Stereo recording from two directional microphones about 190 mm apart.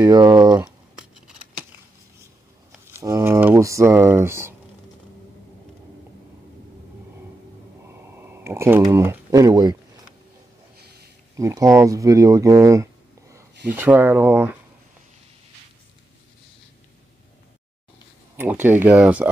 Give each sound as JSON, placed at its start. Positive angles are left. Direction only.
{"t": 0.0, "sound": "speech", "side_deg": -20}
{"t": 0.5, "sound": "speech", "side_deg": -5}
{"t": 3.0, "sound": "speech", "side_deg": -15}
{"t": 7.9, "sound": "a sound", "side_deg": -10}
{"t": 8.9, "sound": "speech", "side_deg": -15}
{"t": 11.3, "sound": "speech", "side_deg": -15}
{"t": 18.3, "sound": "speech", "side_deg": -10}